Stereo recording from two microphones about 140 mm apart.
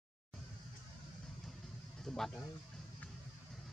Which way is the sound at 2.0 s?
5° left (ahead or behind).